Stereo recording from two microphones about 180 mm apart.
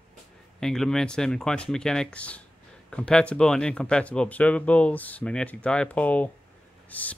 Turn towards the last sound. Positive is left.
turn(degrees=10)  # may be behind; listen again after turning